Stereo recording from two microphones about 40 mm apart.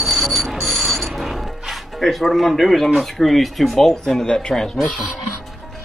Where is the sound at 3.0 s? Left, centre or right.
Centre.